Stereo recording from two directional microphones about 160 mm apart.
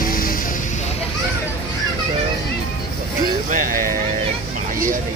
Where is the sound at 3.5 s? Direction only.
55° right (ahead or behind).